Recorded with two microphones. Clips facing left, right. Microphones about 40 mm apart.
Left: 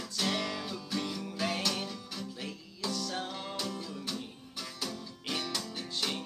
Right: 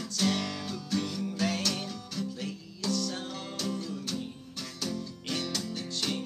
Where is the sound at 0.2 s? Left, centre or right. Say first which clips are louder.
Right 3 dB; centre.